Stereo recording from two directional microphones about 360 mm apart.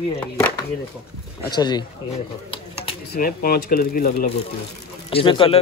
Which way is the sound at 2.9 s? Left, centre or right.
Left.